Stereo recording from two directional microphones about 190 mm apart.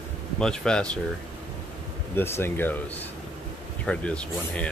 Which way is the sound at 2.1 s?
10° left (ahead or behind).